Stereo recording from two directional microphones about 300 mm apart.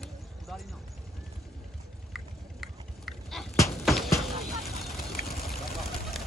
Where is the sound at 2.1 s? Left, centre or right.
Centre.